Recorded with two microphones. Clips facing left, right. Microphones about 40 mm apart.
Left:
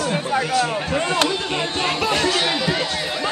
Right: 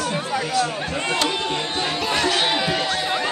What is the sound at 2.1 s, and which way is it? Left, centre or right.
Chatter, right.